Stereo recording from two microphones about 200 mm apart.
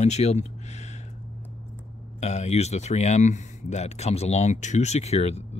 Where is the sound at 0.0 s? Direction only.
35° left (ahead or behind).